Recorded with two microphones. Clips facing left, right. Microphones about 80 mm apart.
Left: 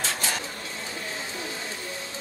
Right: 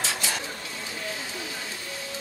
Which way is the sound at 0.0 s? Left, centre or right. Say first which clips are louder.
Left 1 dB; left.